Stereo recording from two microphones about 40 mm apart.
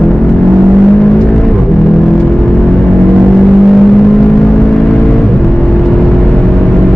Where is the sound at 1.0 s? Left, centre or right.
Centre.